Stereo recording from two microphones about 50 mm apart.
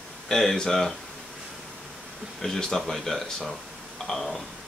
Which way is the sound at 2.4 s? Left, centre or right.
Centre.